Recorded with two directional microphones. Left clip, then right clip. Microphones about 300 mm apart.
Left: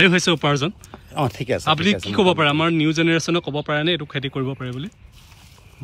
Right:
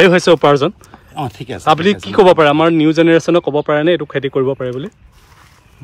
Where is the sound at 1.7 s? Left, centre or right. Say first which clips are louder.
Right 8 dB; centre.